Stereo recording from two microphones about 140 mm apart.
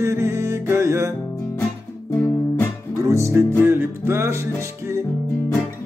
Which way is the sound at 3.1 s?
20° right (ahead or behind).